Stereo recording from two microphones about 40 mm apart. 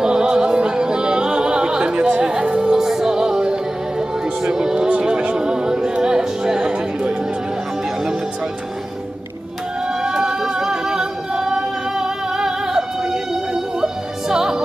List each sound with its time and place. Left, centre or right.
0.0 s music: right
4.6 s music: centre
4.8 s music: right
10.0 s music: centre
14.3 s opera: centre